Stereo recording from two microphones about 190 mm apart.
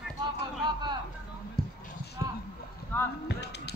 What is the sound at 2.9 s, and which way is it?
Basketball bounce, 10° left (ahead or behind).